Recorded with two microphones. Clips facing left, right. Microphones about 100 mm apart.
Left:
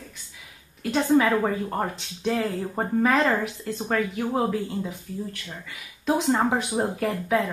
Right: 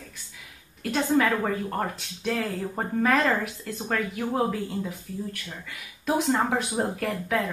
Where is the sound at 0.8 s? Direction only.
5° left (ahead or behind).